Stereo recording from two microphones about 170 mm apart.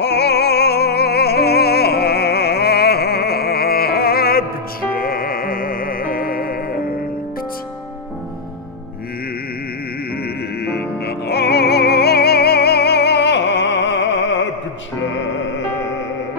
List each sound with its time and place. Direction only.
0.0 s music: 75° left (ahead or behind); by 6.5 s 60° left (ahead or behind)
10.6 s music: 70° left (ahead or behind); by 14.5 s 90° left